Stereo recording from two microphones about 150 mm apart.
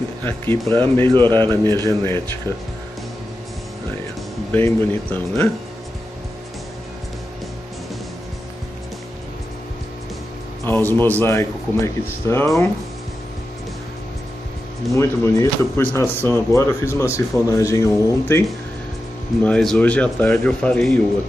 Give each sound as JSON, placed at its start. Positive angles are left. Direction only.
{"t": 0.2, "sound": "a man's voice", "side_deg": 15}
{"t": 4.5, "sound": "a man's voice", "side_deg": 15}
{"t": 10.6, "sound": "a man's voice", "side_deg": 15}
{"t": 15.0, "sound": "speech", "side_deg": 20}
{"t": 19.4, "sound": "a man's voice", "side_deg": 5}